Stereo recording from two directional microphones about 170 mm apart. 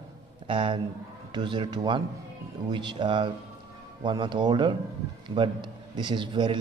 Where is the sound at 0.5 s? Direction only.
30° right (ahead or behind).